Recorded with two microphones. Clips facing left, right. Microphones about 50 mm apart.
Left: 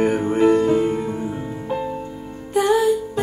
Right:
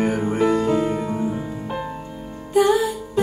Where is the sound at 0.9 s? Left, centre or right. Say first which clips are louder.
Even; right.